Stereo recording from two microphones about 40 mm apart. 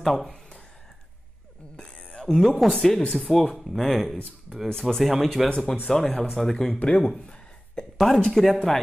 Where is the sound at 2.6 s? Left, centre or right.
Centre.